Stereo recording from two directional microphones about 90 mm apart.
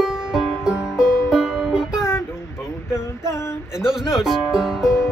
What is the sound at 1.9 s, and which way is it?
Music, 35° left (ahead or behind).